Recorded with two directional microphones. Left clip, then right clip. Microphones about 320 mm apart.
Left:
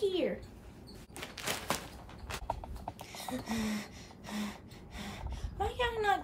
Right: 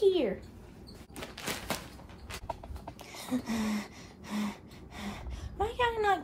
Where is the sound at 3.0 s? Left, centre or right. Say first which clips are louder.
Right 5 dB; centre.